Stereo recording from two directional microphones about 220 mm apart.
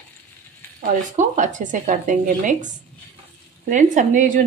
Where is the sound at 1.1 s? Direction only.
35° right (ahead or behind).